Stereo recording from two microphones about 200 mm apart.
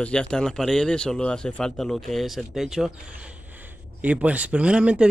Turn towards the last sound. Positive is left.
turn(degrees=-5)  # may be behind; listen again after turning